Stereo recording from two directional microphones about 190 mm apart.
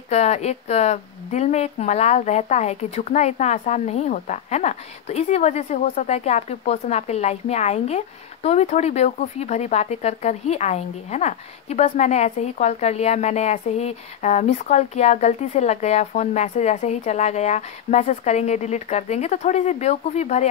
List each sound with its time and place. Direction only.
0.1 s speech: 35° left (ahead or behind)